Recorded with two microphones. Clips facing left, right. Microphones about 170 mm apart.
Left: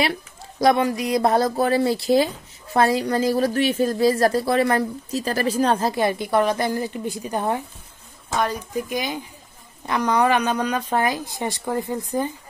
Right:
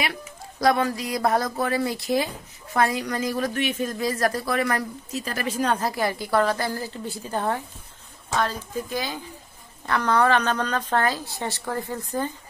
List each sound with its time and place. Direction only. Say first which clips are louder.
0.0 s a woman's voice: left 6 dB; 25° left (ahead or behind)